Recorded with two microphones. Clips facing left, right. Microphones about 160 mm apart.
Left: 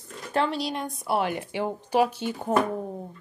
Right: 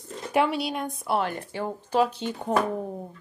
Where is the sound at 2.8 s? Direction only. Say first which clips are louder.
Even; 5° right (ahead or behind).